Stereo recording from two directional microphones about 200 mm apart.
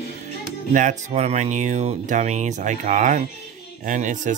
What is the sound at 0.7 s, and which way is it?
Speech, 35° right (ahead or behind).